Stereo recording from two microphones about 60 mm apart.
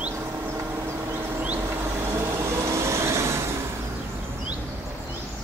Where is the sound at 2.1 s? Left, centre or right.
Right.